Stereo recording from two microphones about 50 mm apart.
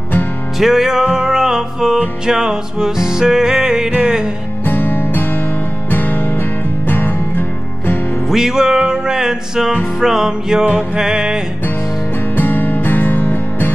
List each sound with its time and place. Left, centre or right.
0.6 s music: centre
4.6 s music: left
8.3 s music: centre
12.4 s music: left